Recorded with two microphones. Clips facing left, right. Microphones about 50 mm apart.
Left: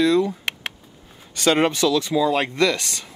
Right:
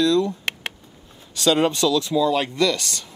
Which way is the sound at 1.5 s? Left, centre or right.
Left.